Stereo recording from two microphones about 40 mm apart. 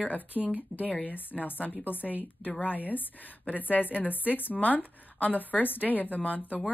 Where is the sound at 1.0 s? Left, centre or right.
Left.